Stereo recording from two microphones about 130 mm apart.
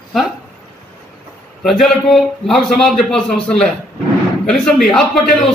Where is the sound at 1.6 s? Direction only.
Centre (ahead or behind).